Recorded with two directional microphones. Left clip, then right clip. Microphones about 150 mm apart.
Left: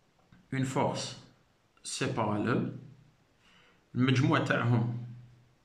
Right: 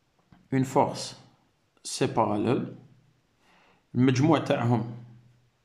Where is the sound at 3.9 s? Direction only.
40° right (ahead or behind).